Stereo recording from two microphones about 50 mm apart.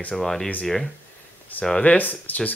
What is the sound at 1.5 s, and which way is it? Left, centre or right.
Speech, left.